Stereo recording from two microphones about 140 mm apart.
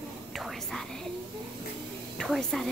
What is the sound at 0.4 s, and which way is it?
Speech, centre (ahead or behind).